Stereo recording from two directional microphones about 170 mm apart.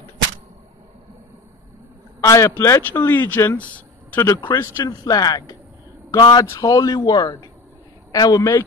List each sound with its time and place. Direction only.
2.2 s a man's voice: 15° left (ahead or behind)